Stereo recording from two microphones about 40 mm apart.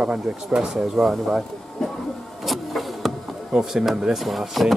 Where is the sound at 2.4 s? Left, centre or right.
Centre.